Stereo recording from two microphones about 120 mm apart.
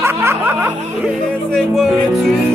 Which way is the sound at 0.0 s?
20° right (ahead or behind).